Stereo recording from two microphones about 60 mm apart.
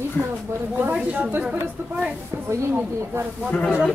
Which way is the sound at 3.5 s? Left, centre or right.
Centre.